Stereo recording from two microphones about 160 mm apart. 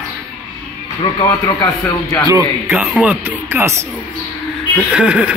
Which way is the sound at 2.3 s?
10° right (ahead or behind).